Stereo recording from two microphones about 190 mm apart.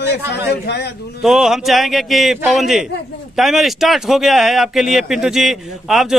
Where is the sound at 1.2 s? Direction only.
Centre (ahead or behind).